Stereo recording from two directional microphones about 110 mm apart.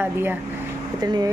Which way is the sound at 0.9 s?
40° right (ahead or behind).